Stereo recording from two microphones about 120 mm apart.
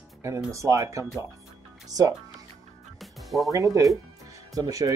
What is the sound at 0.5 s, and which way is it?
Speech, 25° right (ahead or behind).